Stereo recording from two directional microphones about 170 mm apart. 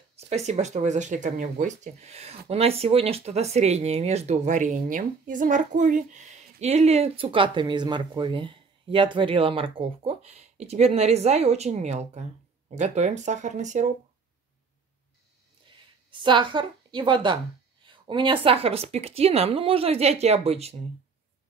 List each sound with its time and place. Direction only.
0.3 s speech: 40° right (ahead or behind)
16.1 s a woman's voice: 30° right (ahead or behind)